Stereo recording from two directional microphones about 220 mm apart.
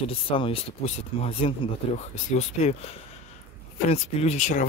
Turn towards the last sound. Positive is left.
turn(degrees=35)  # may be behind; listen again after turning